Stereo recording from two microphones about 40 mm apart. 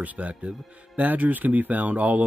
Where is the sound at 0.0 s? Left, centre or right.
Right.